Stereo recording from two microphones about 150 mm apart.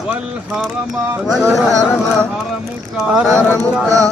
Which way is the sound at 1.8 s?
10° left (ahead or behind).